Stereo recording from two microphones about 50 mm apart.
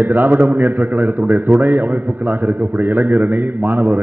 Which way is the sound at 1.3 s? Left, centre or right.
Right.